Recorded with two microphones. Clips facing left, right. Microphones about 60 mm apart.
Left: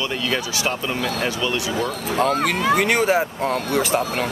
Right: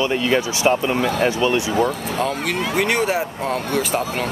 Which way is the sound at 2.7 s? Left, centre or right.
Centre.